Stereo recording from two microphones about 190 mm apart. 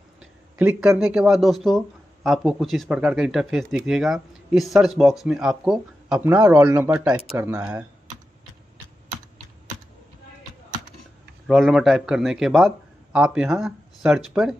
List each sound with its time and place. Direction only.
0.2 s speech: 5° right (ahead or behind)
11.4 s speech: centre (ahead or behind)